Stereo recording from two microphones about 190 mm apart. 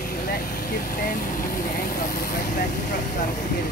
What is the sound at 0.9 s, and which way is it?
Vehicle, 45° left (ahead or behind).